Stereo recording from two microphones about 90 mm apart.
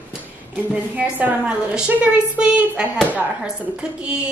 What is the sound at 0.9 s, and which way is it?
Speech, 15° right (ahead or behind).